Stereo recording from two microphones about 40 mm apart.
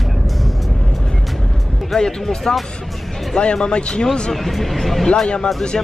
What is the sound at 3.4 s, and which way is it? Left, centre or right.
Speech, left.